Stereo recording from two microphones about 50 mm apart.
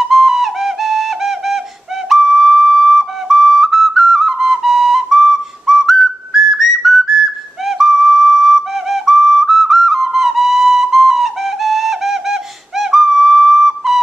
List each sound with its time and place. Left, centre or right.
0.0 s whistle: centre